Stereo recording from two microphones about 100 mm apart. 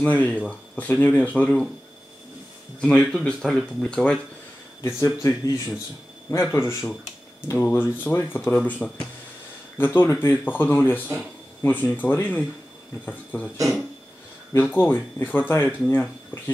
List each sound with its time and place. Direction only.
0.0 s speech: 15° left (ahead or behind)
2.8 s speech: 10° left (ahead or behind)
4.8 s a man's voice: 30° left (ahead or behind)
8.8 s speech: 5° left (ahead or behind)
9.8 s speech: 20° left (ahead or behind)
14.5 s speech: 20° left (ahead or behind)